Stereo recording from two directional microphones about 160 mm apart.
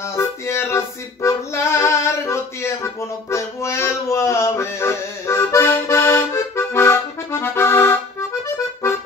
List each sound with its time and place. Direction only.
0.0 s music: 15° left (ahead or behind)